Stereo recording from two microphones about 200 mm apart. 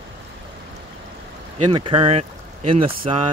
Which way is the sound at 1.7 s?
25° right (ahead or behind).